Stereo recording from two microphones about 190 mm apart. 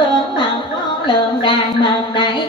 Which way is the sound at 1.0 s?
25° left (ahead or behind).